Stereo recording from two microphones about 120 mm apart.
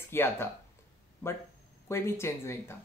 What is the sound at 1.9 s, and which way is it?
Speech, 20° left (ahead or behind).